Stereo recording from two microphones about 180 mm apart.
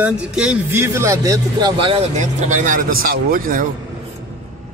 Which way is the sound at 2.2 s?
40° right (ahead or behind).